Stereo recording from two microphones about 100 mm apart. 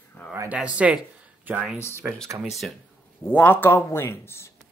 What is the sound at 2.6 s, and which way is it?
Speech, 5° left (ahead or behind).